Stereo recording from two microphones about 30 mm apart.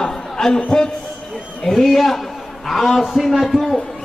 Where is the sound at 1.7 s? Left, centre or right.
Centre.